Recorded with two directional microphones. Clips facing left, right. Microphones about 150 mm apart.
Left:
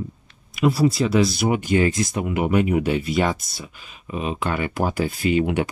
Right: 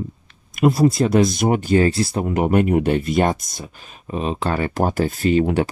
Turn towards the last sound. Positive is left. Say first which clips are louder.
# right 3 dB
turn(degrees=-35)  # may be behind; listen again after turning